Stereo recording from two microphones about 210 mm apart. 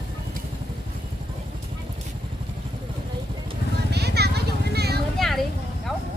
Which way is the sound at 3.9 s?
50° right (ahead or behind).